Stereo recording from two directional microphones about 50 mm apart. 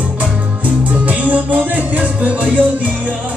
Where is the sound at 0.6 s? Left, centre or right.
Right.